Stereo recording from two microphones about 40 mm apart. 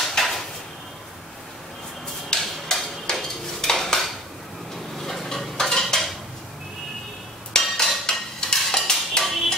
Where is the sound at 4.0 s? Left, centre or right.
Centre.